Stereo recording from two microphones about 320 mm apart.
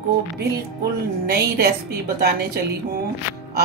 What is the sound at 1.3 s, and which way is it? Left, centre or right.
Speech, right.